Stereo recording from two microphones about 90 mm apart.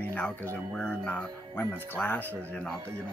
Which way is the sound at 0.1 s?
20° left (ahead or behind).